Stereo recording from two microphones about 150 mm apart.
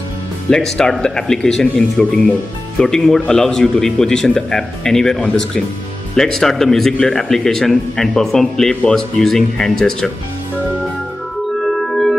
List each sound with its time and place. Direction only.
0.5 s a man's voice: 5° left (ahead or behind)
11.6 s music: centre (ahead or behind)